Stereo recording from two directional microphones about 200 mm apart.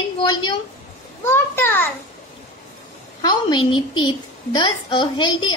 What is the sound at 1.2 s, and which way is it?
Speech, 10° left (ahead or behind).